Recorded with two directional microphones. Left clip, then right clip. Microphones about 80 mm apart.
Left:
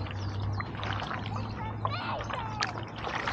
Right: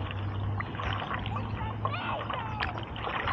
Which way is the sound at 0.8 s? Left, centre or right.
Left.